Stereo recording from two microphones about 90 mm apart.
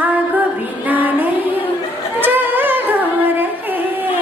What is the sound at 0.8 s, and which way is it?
Music, 20° right (ahead or behind).